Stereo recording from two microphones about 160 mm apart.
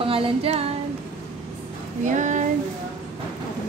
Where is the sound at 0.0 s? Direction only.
35° right (ahead or behind).